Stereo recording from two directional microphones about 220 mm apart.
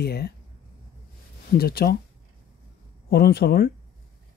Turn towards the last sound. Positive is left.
turn(degrees=45)  # may be behind; listen again after turning